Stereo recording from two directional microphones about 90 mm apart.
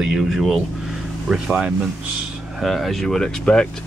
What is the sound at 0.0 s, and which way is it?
Speech, 5° right (ahead or behind).